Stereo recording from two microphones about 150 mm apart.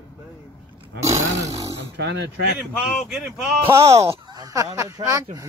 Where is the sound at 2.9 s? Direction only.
5° right (ahead or behind).